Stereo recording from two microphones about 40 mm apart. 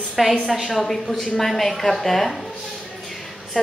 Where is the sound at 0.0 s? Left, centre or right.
Centre.